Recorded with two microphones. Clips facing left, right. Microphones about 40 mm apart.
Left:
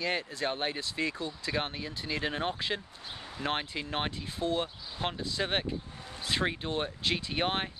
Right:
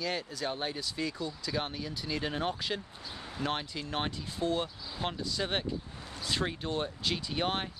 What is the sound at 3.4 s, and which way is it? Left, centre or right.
Speech, left.